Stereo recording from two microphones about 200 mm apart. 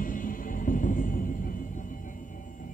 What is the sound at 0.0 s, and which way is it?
Music, 40° left (ahead or behind).